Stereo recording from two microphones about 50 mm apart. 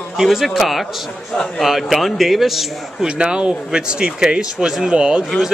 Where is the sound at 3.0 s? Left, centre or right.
Centre.